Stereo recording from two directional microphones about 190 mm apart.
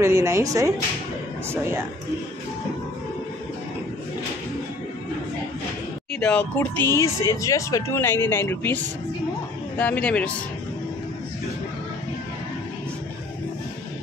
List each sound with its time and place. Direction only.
0.0 s speech: 15° right (ahead or behind)
6.1 s speech: 5° left (ahead or behind)